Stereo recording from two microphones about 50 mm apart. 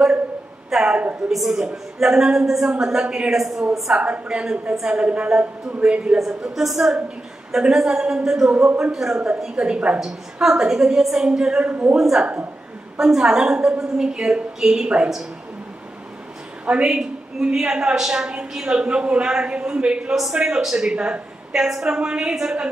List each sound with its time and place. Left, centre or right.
0.8 s a man's voice: right
1.3 s a woman's voice: centre
3.9 s a man's voice: right
6.1 s a woman's voice: centre; by 9.9 s right
9.9 s a woman's voice: centre
11.6 s a man's voice: right
12.0 s a woman's voice: centre
16.8 s a woman's voice: centre
18.8 s a man's voice: right